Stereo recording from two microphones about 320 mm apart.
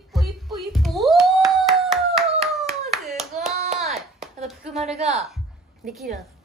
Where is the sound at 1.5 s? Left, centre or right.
Centre.